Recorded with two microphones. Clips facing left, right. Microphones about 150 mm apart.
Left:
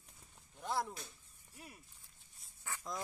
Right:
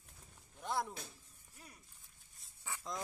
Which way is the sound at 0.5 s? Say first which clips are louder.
Even; centre (ahead or behind).